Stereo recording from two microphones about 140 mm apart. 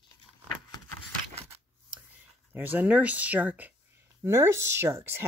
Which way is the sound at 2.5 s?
10° right (ahead or behind).